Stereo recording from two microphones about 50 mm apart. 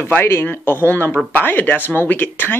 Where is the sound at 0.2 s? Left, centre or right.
Left.